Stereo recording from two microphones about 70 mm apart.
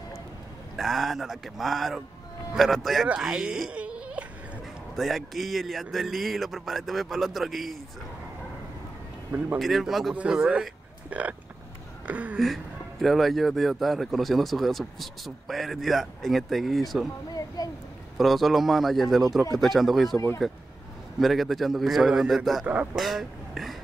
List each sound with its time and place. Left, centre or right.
0.7 s speech: centre
3.2 s speech: centre
3.7 s whimper: centre
4.9 s speech: centre
9.6 s speech: centre
10.1 s speech: centre
11.1 s a sound: right
13.0 s speech: centre
17.3 s speech: left
18.1 s speech: centre